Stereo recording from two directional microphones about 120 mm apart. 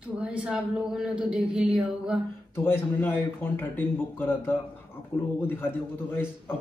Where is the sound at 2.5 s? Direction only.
20° left (ahead or behind).